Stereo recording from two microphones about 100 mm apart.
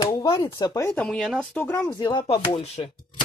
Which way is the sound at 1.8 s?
55° left (ahead or behind).